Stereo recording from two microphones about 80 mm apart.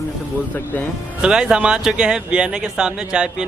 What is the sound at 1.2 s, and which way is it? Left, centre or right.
Speech, centre.